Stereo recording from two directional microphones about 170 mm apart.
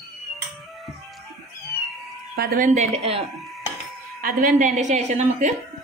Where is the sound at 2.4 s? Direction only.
60° right (ahead or behind).